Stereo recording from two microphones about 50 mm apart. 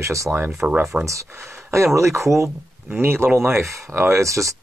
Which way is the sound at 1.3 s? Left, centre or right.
Right.